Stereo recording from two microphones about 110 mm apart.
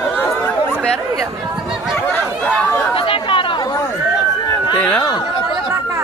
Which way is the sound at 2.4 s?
15° left (ahead or behind).